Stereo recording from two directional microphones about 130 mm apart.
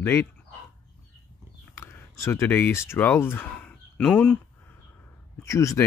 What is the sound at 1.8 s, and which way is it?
Speech, 20° left (ahead or behind).